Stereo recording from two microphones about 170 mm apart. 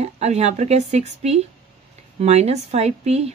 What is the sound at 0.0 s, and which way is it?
Speech, 40° right (ahead or behind).